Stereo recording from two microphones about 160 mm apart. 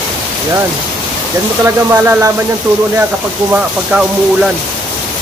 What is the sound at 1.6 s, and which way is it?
Speech, 15° right (ahead or behind).